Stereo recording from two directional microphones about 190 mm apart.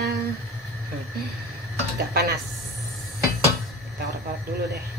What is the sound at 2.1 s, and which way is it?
Speech, 55° right (ahead or behind).